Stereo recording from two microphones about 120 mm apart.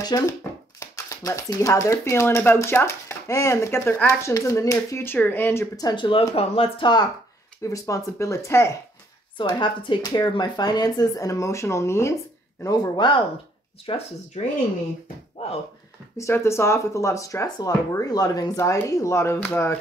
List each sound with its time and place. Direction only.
0.0 s speech: 30° left (ahead or behind)
5.8 s speech: 40° left (ahead or behind)
7.6 s speech: 25° left (ahead or behind)
9.4 s speech: 45° left (ahead or behind); by 12.1 s 25° left (ahead or behind)
12.6 s speech: 35° left (ahead or behind)
13.8 s speech: 60° left (ahead or behind)
16.2 s speech: 25° left (ahead or behind)